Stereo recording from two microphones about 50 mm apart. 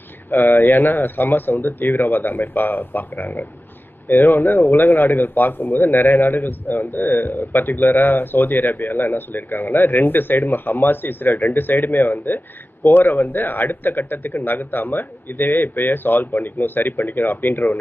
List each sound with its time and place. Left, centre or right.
0.3 s a man's voice: left